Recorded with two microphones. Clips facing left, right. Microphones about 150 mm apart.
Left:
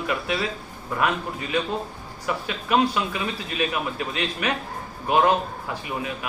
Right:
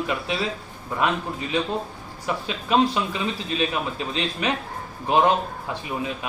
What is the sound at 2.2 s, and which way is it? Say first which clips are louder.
A man's voice: even; 25° right (ahead or behind).